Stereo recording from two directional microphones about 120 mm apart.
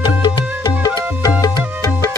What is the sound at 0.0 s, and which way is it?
Music, 40° left (ahead or behind).